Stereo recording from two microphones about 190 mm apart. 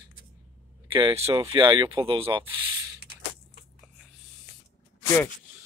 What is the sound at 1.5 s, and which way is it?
Speech, 25° right (ahead or behind).